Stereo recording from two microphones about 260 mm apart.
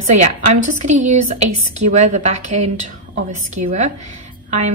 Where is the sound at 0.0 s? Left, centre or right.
Right.